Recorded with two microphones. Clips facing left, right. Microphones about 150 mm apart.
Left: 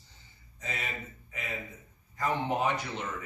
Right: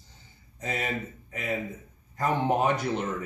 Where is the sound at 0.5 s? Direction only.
50° right (ahead or behind).